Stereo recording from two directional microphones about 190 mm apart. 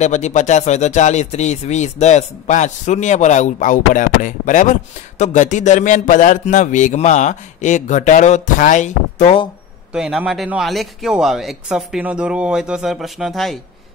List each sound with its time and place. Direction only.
0.0 s speech: 40° left (ahead or behind)
9.9 s speech: 5° right (ahead or behind)